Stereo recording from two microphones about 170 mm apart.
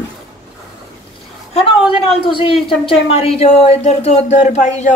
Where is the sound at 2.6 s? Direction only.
35° left (ahead or behind).